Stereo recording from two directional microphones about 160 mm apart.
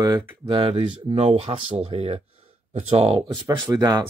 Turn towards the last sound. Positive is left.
turn(degrees=-25)  # may be behind; listen again after turning